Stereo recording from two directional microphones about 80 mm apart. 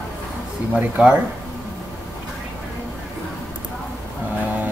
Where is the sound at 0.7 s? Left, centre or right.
Centre.